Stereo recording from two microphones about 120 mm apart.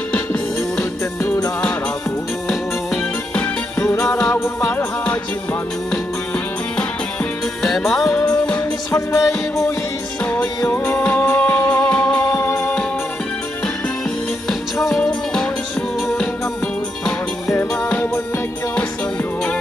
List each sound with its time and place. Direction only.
0.7 s music: 25° left (ahead or behind)
3.8 s music: 20° left (ahead or behind)
7.6 s music: centre (ahead or behind)
8.1 s music: 10° left (ahead or behind)
8.9 s music: 25° left (ahead or behind)
12.4 s music: 20° left (ahead or behind)
14.5 s music: centre (ahead or behind)
17.6 s music: 15° left (ahead or behind)